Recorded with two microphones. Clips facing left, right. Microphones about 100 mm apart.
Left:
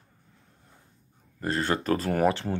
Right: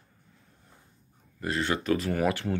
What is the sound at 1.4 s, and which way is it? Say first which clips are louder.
Speech: left 2 dB; 40° left (ahead or behind).